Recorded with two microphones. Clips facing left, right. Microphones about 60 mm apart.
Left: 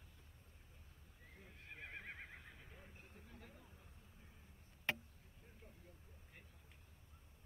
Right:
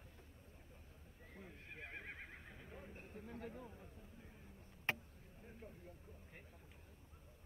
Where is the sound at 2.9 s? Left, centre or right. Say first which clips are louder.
Right 8 dB; right.